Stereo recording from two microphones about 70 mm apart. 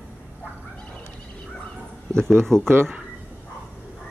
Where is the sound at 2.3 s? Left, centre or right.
Centre.